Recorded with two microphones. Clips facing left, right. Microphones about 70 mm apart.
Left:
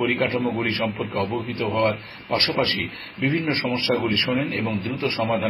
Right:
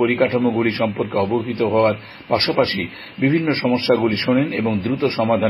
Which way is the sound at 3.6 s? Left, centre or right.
Right.